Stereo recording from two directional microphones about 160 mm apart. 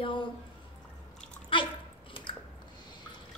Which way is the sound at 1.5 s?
30° left (ahead or behind).